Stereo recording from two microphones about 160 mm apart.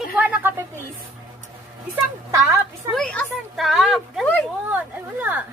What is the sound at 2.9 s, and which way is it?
A woman's voice, 5° left (ahead or behind).